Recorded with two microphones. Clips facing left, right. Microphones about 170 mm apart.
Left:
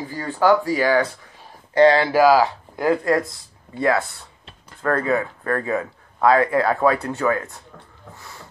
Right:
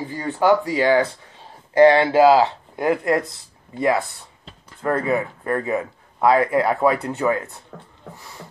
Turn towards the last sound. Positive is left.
turn(degrees=-20)  # may be behind; listen again after turning